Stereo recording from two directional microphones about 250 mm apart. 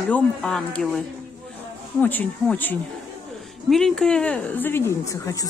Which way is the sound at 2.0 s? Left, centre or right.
Centre.